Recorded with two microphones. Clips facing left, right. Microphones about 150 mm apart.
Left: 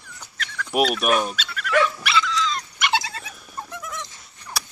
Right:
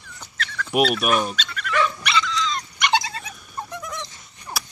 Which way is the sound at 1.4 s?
5° left (ahead or behind).